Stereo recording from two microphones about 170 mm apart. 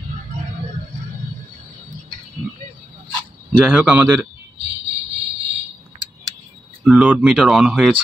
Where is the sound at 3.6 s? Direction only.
5° right (ahead or behind).